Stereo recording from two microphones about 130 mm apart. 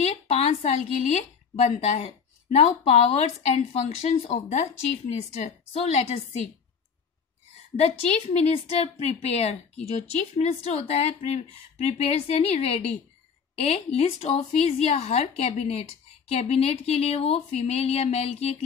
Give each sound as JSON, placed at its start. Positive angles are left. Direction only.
{"t": 0.0, "sound": "a woman's voice", "side_deg": 55}
{"t": 5.7, "sound": "speech", "side_deg": 50}
{"t": 7.5, "sound": "a woman's voice", "side_deg": 55}